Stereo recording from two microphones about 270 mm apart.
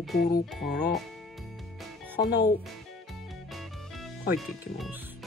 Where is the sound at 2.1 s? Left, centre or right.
Left.